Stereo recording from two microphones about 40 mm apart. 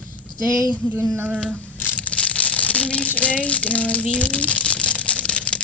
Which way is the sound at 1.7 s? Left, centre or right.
Left.